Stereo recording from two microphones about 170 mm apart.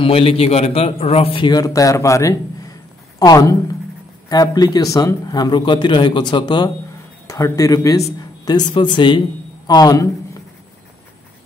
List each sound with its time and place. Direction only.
0.0 s a man's voice: 35° left (ahead or behind)